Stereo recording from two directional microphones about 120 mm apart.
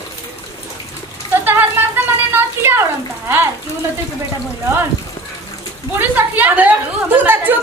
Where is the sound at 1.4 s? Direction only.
15° right (ahead or behind).